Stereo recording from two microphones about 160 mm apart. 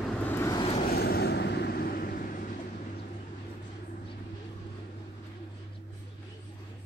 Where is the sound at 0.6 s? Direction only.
40° left (ahead or behind).